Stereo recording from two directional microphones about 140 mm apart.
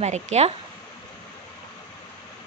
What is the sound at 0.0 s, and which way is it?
Speech, 55° right (ahead or behind).